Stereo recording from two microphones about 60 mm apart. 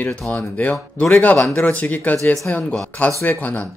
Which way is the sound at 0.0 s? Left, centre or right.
Left.